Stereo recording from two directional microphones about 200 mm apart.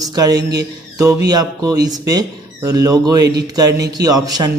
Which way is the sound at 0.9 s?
15° right (ahead or behind).